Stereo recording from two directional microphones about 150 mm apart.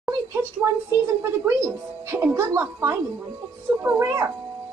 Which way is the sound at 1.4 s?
20° right (ahead or behind).